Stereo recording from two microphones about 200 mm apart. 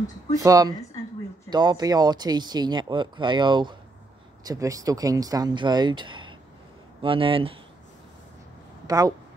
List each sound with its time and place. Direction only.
0.4 s speech: 20° right (ahead or behind)
8.8 s speech: 20° right (ahead or behind)